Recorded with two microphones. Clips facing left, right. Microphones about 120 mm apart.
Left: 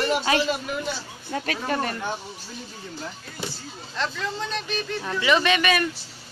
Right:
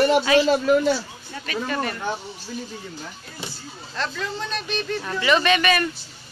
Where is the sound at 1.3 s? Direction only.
70° left (ahead or behind).